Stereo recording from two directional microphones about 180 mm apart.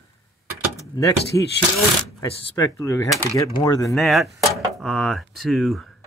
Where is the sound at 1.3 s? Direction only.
20° left (ahead or behind).